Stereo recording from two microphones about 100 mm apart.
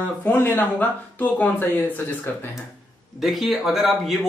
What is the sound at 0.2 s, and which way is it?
Speech, 20° left (ahead or behind).